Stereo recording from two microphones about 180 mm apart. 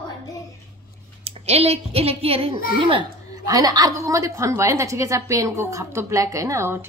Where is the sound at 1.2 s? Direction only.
35° right (ahead or behind).